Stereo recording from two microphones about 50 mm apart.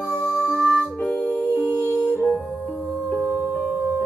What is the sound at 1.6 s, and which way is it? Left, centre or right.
Music, right.